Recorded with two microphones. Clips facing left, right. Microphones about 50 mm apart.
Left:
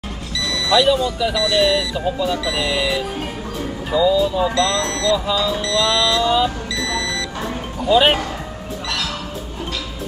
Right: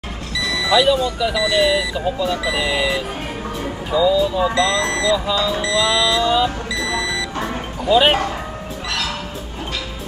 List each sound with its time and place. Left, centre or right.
0.4 s vehicle: centre
0.7 s speech: centre
5.1 s speech: centre
5.6 s vehicle: centre
6.7 s beep: centre
7.8 s speech: centre